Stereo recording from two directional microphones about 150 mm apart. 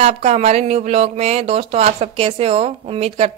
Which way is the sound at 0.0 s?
45° right (ahead or behind).